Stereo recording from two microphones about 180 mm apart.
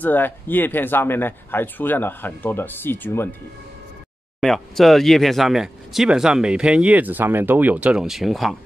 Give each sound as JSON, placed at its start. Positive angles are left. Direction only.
{"t": 0.0, "sound": "speech", "side_deg": 10}
{"t": 4.4, "sound": "speech", "side_deg": 0}